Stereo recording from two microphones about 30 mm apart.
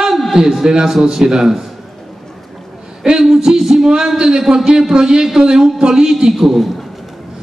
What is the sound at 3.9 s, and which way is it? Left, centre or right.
A man's voice, right.